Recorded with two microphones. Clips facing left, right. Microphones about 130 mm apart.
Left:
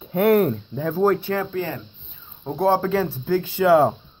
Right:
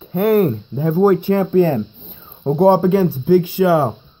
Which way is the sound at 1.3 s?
35° right (ahead or behind).